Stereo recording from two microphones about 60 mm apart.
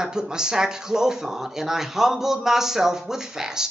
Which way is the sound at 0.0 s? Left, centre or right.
Centre.